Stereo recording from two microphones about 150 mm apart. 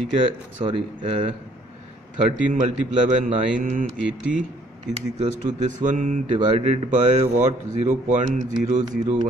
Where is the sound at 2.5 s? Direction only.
50° right (ahead or behind).